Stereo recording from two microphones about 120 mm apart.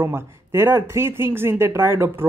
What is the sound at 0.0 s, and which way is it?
Speech, 20° right (ahead or behind).